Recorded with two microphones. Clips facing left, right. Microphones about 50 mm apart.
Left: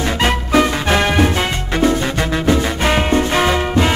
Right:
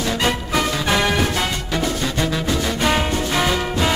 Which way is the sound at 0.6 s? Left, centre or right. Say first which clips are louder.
Left 6 dB; left.